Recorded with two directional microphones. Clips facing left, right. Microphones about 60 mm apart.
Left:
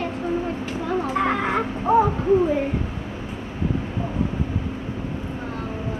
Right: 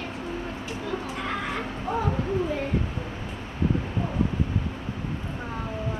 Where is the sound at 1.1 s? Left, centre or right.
Left.